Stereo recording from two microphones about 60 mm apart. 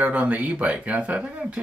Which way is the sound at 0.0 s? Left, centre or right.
Right.